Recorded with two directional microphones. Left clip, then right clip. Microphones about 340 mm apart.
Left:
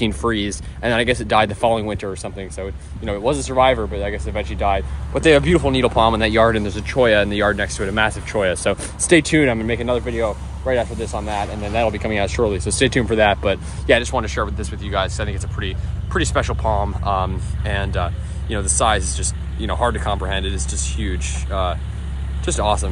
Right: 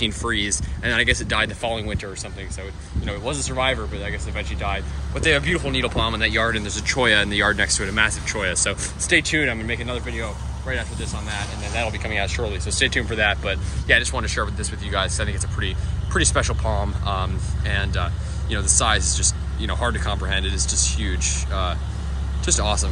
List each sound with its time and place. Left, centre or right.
0.0 s speech: centre